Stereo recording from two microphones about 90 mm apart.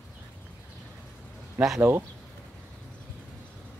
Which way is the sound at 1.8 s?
25° right (ahead or behind).